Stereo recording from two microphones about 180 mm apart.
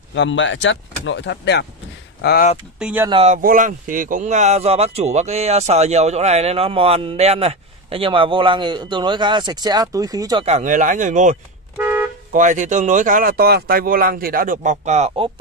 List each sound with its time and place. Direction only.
0.1 s speech: 85° left; by 1.7 s 70° left (ahead or behind)
2.2 s speech: 55° left (ahead or behind)
2.8 s speech: 10° right (ahead or behind)
3.1 s speech: 35° right (ahead or behind)
3.3 s speech: 50° right (ahead or behind); by 10.4 s 20° right (ahead or behind)
10.4 s speech: 40° right (ahead or behind)
11.8 s car alarm: 10° right (ahead or behind)
12.3 s speech: 45° right (ahead or behind)